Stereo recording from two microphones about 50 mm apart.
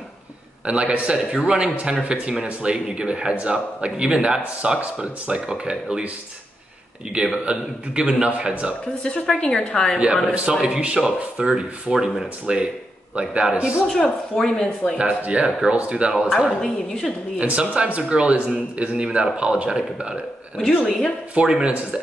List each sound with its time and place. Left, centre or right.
0.7 s a man's voice: right
7.1 s a man's voice: right
9.0 s a woman's voice: centre
10.5 s a man's voice: centre
13.8 s speech: centre
15.0 s a man's voice: right
16.1 s speech: centre
16.6 s speech: centre
17.4 s a man's voice: right
20.6 s speech: centre
21.4 s a man's voice: centre